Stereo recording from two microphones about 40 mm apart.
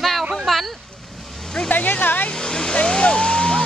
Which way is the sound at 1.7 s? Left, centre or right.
Left.